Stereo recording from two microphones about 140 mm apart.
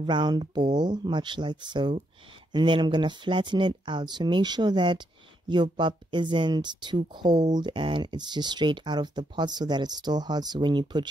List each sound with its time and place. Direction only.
0.0 s speech: 30° right (ahead or behind)